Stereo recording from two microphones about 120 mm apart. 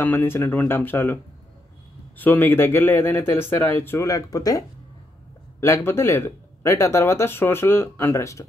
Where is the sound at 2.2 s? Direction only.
15° left (ahead or behind).